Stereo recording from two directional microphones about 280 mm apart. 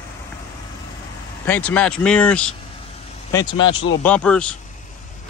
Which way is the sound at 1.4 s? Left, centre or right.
Centre.